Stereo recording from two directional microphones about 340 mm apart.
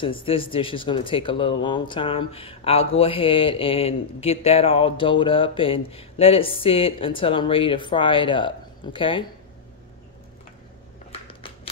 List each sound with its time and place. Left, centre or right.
0.0 s speech: centre